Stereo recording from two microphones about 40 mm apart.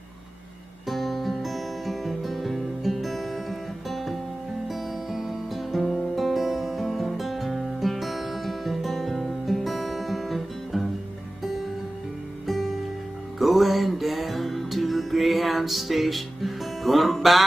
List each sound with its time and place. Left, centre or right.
0.8 s music: centre
12.4 s music: centre